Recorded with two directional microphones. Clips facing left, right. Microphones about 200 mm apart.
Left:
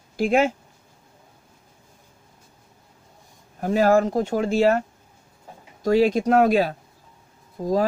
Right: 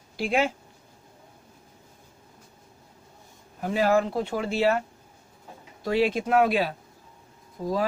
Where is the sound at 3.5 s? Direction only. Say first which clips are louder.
Left 5 dB; 45° left (ahead or behind).